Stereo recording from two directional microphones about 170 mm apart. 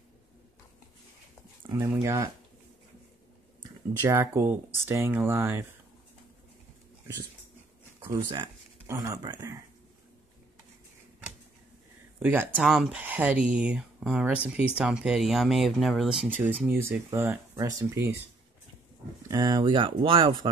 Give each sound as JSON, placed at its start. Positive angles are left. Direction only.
{"t": 1.9, "sound": "speech", "side_deg": -15}
{"t": 4.0, "sound": "speech", "side_deg": -15}
{"t": 8.8, "sound": "speech", "side_deg": -20}
{"t": 12.2, "sound": "speech", "side_deg": -10}
{"t": 12.4, "sound": "speech", "side_deg": 0}
{"t": 19.2, "sound": "speech", "side_deg": -20}